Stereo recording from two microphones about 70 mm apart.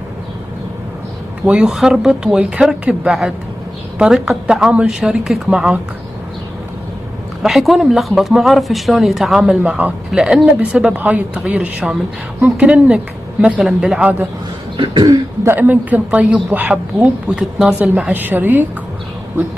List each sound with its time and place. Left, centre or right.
1.4 s speech: centre
1.7 s a woman's voice: centre
7.4 s speech: centre
9.7 s a woman's voice: right
10.1 s a woman's voice: centre
13.6 s speech: centre
15.4 s a woman's voice: right
17.4 s a woman's voice: centre
18.1 s a woman's voice: right